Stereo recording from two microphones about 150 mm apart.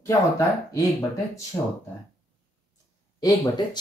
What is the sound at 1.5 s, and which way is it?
Speech, 20° left (ahead or behind).